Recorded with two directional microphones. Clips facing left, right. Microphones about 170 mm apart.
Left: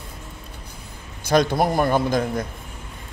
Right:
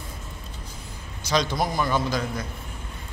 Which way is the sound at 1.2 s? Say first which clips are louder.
Left 6 dB; 55° left (ahead or behind).